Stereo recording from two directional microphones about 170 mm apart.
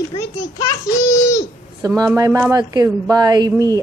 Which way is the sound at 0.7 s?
20° left (ahead or behind).